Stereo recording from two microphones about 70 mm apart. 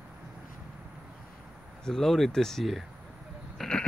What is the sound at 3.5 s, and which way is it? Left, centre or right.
Sheep, centre.